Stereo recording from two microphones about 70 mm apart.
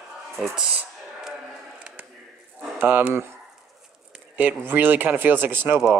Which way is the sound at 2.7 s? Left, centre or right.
Right.